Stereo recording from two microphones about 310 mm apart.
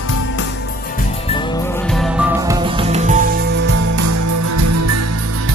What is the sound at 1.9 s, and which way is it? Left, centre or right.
Music, centre.